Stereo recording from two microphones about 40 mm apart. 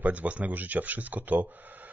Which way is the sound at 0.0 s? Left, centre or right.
Right.